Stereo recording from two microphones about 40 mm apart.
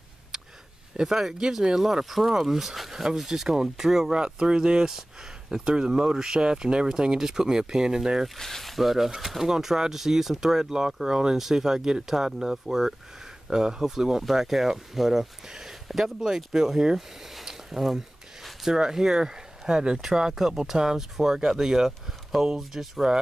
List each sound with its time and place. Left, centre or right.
0.3 s a sound: centre
0.9 s speech: centre
8.4 s speech: centre